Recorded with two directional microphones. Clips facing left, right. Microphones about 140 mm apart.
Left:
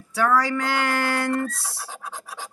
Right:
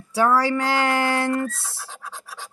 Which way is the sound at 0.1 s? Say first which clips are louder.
Right 2 dB; 30° right (ahead or behind).